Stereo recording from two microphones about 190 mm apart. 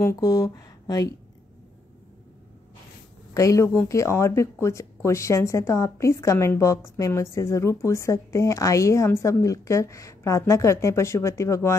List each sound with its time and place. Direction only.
0.0 s speech: 20° left (ahead or behind)
3.3 s a woman's voice: 15° left (ahead or behind)